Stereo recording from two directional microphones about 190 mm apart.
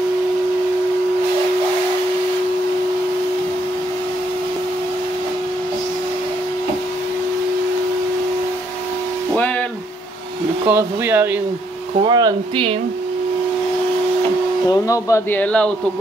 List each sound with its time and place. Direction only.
9.3 s a sound: 10° left (ahead or behind)
10.7 s speech: 10° right (ahead or behind)
12.0 s speech: 20° right (ahead or behind)
14.7 s speech: 15° left (ahead or behind)